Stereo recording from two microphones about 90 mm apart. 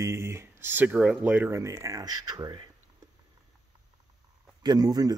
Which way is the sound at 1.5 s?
35° right (ahead or behind).